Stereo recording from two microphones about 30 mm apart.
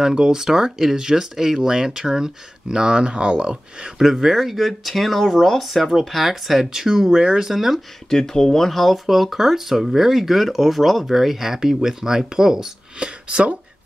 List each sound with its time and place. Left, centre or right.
0.0 s speech: right
4.0 s speech: centre
4.4 s speech: centre
8.1 s speech: centre
8.7 s speech: centre
13.0 s speech: right